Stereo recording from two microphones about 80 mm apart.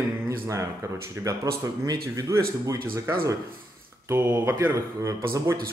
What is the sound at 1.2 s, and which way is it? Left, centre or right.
A man's voice, right.